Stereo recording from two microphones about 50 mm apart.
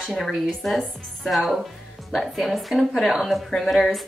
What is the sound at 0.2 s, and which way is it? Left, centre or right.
A woman's voice, centre.